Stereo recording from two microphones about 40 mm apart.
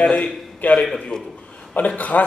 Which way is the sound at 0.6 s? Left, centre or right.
Left.